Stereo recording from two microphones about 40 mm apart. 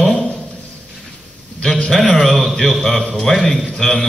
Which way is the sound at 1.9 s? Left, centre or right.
Centre.